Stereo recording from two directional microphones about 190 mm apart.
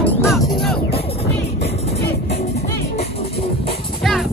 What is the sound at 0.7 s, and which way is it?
Music, 30° left (ahead or behind).